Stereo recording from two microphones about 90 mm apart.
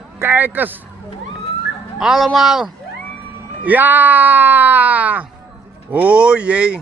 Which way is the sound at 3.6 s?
20° right (ahead or behind).